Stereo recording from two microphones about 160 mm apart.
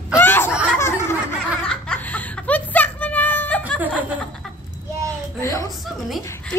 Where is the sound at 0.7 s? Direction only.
15° left (ahead or behind).